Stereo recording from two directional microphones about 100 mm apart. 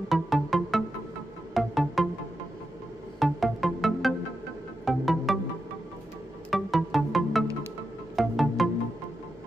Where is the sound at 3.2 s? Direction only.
Centre (ahead or behind).